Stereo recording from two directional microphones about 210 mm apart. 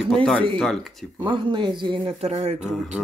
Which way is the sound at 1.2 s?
20° right (ahead or behind).